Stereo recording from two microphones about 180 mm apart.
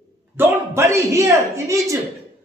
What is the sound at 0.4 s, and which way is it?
A man's voice, 15° right (ahead or behind).